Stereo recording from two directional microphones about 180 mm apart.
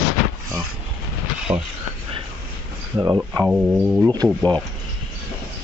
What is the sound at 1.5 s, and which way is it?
Speech, 15° right (ahead or behind).